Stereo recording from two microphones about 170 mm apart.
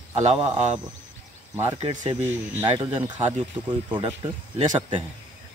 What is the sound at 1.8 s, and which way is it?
Speech, 45° right (ahead or behind).